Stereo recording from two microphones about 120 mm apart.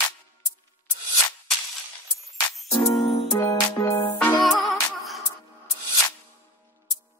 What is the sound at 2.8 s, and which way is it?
Music, 55° left (ahead or behind).